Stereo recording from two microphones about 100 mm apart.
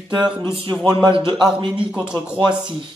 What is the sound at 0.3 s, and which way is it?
Speech, 60° right (ahead or behind).